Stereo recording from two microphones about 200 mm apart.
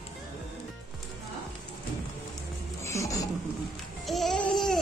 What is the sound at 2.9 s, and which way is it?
Laughter, 15° left (ahead or behind).